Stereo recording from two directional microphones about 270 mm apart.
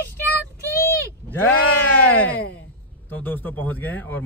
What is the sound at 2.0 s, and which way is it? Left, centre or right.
Speech, centre.